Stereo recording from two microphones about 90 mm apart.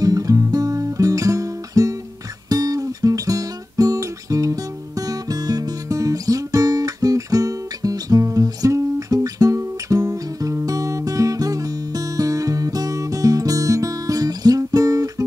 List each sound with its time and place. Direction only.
0.0 s music: 40° right (ahead or behind)